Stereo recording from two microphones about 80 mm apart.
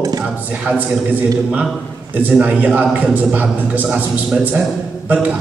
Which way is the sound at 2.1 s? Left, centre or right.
Right.